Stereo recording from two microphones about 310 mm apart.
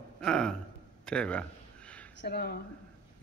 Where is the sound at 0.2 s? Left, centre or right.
Centre.